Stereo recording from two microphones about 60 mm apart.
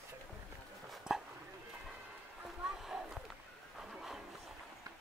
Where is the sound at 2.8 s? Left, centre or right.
Centre.